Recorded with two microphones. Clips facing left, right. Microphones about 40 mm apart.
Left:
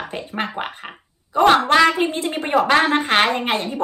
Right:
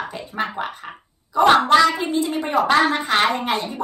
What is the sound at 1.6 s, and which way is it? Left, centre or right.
A woman's voice, left.